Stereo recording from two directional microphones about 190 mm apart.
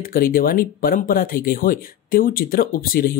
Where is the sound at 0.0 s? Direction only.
50° left (ahead or behind).